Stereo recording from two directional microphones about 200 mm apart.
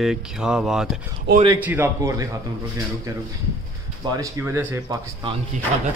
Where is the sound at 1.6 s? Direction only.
10° right (ahead or behind).